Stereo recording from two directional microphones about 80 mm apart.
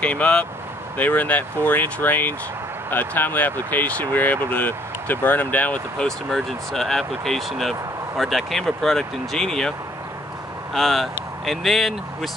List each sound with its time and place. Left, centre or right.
0.0 s speech: centre
6.0 s speech: centre